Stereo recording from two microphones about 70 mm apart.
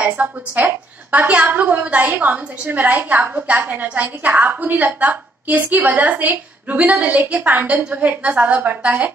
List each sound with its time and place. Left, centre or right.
0.0 s a woman's voice: right